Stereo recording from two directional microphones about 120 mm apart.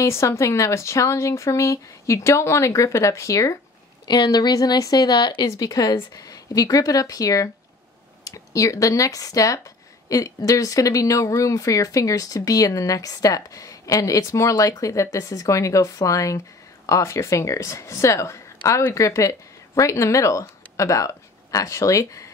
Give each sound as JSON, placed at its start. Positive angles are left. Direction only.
{"t": 0.0, "sound": "a woman's voice", "side_deg": 25}